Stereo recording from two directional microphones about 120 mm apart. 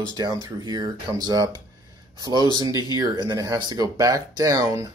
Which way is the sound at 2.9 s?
35° right (ahead or behind).